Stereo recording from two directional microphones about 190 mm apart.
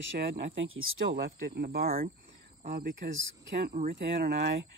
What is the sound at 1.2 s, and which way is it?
Speech, 55° right (ahead or behind).